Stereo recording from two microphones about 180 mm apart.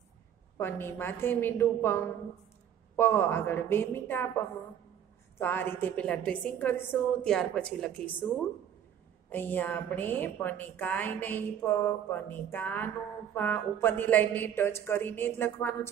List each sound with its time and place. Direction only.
0.6 s a woman's voice: 10° left (ahead or behind)
9.3 s a woman's voice: 10° left (ahead or behind)